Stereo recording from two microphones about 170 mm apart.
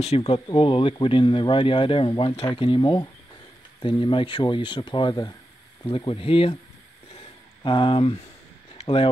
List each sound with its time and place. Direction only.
0.0 s speech: 35° left (ahead or behind)
7.6 s speech: 30° left (ahead or behind)